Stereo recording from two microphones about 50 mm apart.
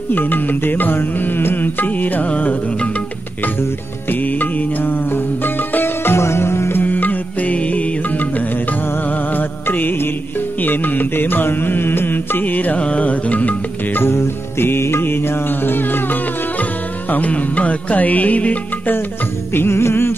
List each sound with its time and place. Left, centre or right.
0.1 s music: left
4.1 s music: left
6.1 s music: left
6.8 s music: left
9.3 s music: left
14.0 s music: left
17.1 s music: left
19.5 s music: left